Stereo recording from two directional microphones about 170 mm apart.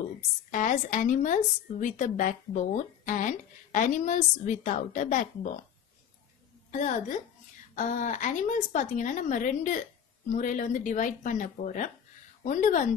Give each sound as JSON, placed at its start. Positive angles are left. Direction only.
{"t": 0.5, "sound": "speech", "side_deg": 50}
{"t": 6.7, "sound": "speech", "side_deg": 45}